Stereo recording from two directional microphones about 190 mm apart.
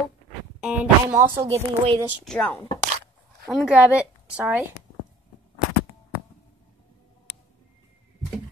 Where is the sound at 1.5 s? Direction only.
30° right (ahead or behind).